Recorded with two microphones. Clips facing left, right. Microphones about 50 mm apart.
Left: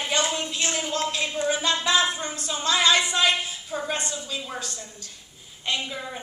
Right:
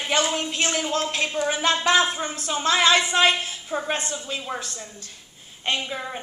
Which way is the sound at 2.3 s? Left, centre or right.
Right.